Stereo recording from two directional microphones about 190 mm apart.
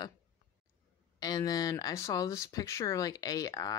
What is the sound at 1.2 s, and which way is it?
Speech, 20° left (ahead or behind).